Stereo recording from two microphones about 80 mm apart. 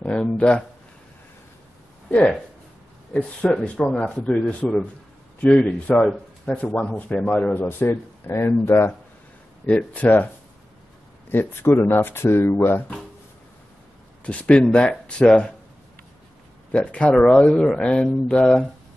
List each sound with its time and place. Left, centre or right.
0.0 s speech: centre
2.0 s speech: centre
7.6 s speech: left
9.7 s speech: centre
11.2 s speech: left
14.2 s speech: centre
16.7 s speech: centre